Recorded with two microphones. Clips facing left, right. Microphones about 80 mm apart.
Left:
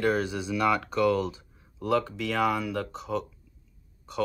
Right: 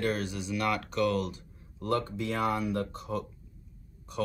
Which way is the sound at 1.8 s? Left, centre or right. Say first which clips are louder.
Left 4 dB; left.